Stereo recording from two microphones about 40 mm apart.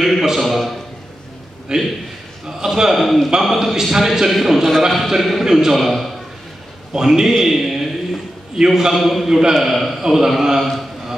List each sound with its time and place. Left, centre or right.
0.0 s a sound: centre
1.7 s a man's voice: centre
3.0 s a man's voice: centre
3.5 s a man's voice: centre
7.3 s a sound: centre
8.6 s a man's voice: centre
10.6 s speech: centre